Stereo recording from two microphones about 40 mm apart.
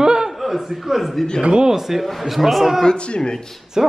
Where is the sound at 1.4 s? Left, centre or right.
Right.